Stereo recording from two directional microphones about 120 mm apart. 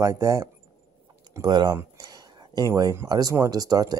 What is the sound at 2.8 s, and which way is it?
Speech, 30° right (ahead or behind).